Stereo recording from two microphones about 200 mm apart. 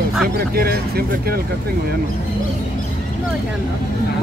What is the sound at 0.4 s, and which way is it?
Speech, 50° right (ahead or behind).